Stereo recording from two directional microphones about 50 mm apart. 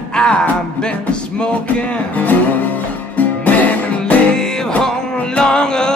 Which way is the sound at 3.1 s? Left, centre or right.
Left.